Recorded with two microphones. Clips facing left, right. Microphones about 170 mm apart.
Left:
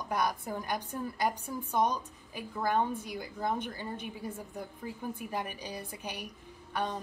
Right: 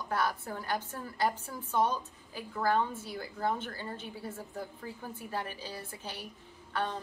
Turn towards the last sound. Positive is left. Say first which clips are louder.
# even
turn(degrees=15)  # may be behind; listen again after turning